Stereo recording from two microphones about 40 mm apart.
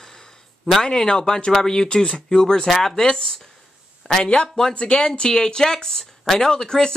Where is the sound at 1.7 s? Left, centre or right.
Left.